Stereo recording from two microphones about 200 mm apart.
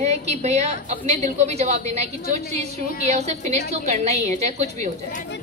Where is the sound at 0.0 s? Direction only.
35° right (ahead or behind).